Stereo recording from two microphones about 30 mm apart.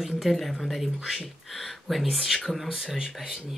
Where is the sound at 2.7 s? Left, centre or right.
Centre.